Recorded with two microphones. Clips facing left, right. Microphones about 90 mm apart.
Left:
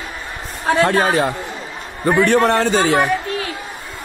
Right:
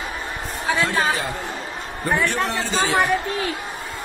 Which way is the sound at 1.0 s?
70° left (ahead or behind).